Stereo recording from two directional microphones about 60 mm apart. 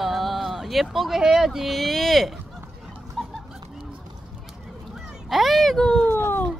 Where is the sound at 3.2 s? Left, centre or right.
Centre.